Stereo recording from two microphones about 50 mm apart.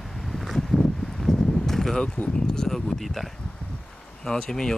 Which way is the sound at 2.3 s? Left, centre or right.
Centre.